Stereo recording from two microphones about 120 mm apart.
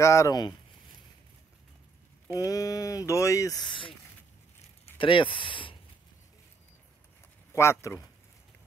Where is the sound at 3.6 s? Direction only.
45° left (ahead or behind).